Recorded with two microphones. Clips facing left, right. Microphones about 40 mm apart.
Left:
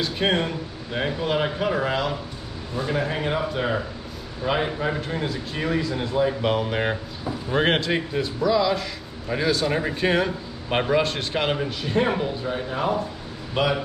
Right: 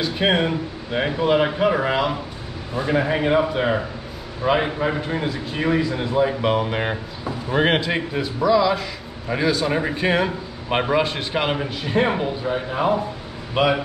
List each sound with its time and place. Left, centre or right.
0.0 s a man's voice: centre